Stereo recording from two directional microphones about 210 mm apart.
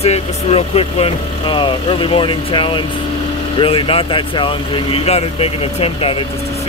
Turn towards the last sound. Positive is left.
turn(degrees=25)  # may be behind; listen again after turning